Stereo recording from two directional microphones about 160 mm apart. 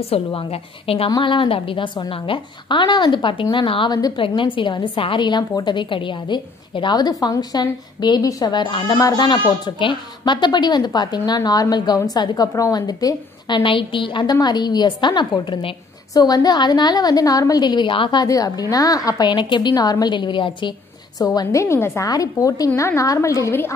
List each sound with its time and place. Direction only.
0.0 s a woman's voice: 35° left (ahead or behind); by 23.7 s 15° left (ahead or behind)